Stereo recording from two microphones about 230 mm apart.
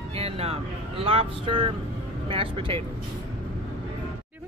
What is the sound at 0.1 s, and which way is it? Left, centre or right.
Speech, right.